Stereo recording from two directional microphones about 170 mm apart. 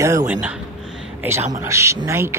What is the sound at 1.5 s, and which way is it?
Speech, 15° right (ahead or behind).